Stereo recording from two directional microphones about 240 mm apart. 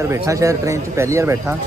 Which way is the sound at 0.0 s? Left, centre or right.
Centre.